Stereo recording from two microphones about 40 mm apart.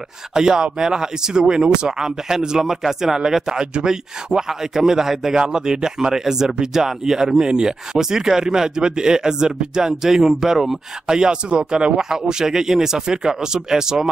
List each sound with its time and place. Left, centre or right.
0.3 s speech: centre